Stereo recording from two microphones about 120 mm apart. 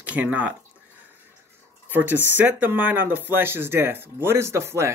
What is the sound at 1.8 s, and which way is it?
Speech, 15° right (ahead or behind).